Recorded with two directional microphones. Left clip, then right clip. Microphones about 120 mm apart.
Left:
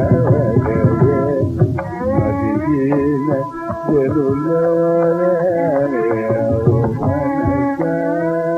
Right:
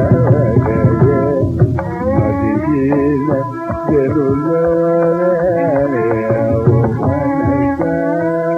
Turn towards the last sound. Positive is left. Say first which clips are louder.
# right 2 dB
turn(degrees=20)  # may be behind; listen again after turning